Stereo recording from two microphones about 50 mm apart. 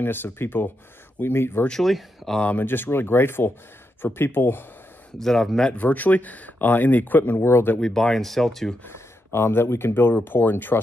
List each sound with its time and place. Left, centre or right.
0.0 s speech: left
1.8 s speech: centre
2.4 s speech: left
5.2 s speech: centre
5.7 s speech: left
7.4 s speech: left
7.8 s speech: centre
8.8 s speech: left